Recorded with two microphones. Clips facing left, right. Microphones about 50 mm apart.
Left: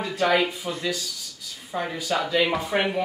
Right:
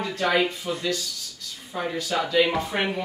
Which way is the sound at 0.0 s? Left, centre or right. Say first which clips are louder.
Left 1 dB; centre.